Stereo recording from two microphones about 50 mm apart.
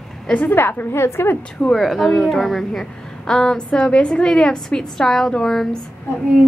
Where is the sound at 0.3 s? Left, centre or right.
Left.